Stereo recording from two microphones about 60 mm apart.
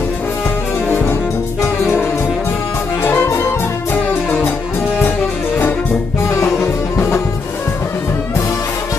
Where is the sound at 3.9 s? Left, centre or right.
Left.